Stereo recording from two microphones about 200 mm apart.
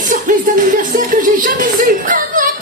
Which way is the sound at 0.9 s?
45° right (ahead or behind).